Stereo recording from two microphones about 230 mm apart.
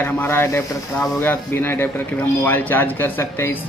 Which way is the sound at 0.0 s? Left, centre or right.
Centre.